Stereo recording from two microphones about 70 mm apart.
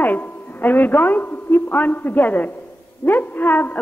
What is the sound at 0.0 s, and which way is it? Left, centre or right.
A woman's voice, left.